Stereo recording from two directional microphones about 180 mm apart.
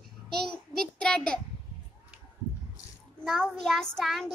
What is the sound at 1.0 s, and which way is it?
Speech, 5° left (ahead or behind).